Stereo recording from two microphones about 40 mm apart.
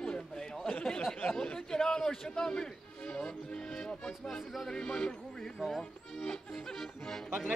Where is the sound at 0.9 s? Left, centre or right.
Centre.